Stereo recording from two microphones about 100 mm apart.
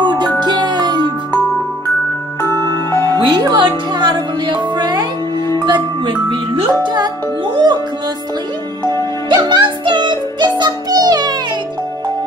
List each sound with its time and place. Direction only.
0.0 s music: 50° right (ahead or behind)
2.9 s music: 30° left (ahead or behind)
3.2 s music: 50° right (ahead or behind)
9.3 s music: 45° right (ahead or behind)